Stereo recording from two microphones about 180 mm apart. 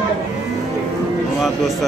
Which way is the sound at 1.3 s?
Centre (ahead or behind).